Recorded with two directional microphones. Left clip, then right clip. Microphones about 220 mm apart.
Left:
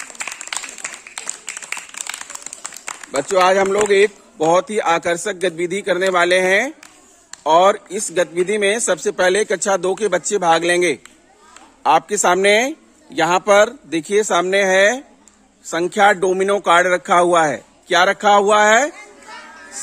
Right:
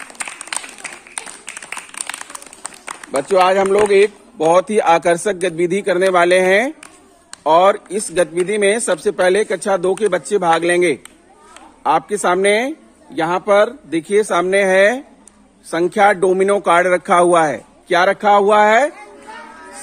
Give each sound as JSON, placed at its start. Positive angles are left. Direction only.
{"t": 0.5, "sound": "applause", "side_deg": -15}
{"t": 1.1, "sound": "a sound", "side_deg": -5}
{"t": 3.0, "sound": "run", "side_deg": 0}
{"t": 3.3, "sound": "a man's voice", "side_deg": -10}